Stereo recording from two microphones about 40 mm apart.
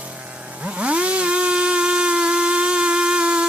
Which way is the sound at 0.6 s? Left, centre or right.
Right.